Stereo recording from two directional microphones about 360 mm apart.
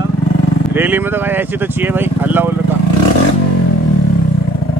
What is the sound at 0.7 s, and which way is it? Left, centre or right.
Speech, centre.